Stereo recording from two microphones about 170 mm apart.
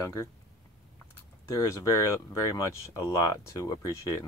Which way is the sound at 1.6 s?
20° left (ahead or behind).